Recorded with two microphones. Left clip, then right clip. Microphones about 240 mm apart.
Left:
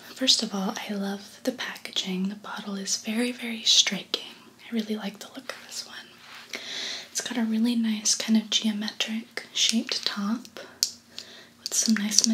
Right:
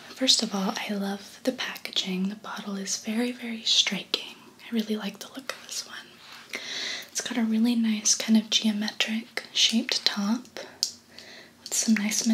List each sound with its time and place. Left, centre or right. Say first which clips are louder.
0.2 s speech: even; centre
11.7 s speech: left 2 dB; centre